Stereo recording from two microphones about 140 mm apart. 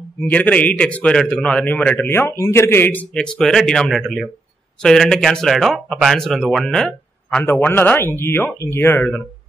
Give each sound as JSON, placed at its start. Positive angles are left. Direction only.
{"t": 0.3, "sound": "a man's voice", "side_deg": 10}